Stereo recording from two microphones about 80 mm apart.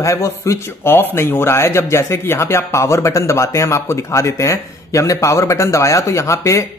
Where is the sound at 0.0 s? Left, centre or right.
Left.